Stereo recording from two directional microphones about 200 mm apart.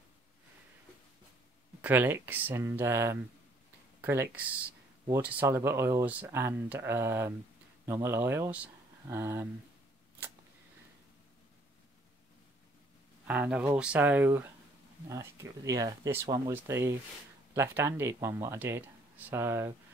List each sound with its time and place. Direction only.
1.8 s speech: 10° right (ahead or behind)
13.3 s speech: 5° right (ahead or behind)